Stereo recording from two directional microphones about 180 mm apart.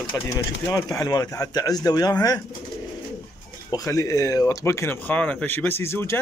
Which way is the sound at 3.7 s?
20° left (ahead or behind).